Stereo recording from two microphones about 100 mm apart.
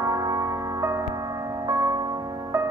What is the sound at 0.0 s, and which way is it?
Music, 40° right (ahead or behind).